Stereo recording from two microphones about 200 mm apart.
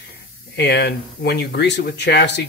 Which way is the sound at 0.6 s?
55° left (ahead or behind).